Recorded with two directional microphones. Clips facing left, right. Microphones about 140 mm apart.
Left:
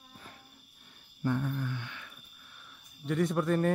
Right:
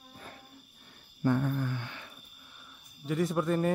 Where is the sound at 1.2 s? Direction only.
60° right (ahead or behind); by 2.1 s 35° right (ahead or behind).